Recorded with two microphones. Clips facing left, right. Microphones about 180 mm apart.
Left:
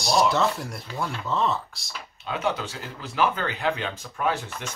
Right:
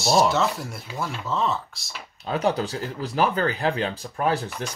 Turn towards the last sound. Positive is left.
turn(degrees=-35)  # may be behind; listen again after turning